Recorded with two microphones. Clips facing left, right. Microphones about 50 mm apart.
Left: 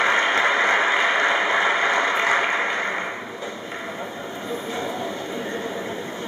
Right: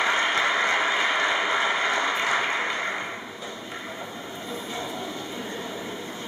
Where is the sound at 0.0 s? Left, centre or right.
Left.